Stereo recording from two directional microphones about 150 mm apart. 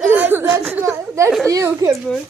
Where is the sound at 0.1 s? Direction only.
15° right (ahead or behind).